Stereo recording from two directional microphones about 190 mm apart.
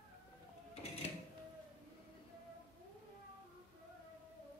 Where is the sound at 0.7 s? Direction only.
30° left (ahead or behind).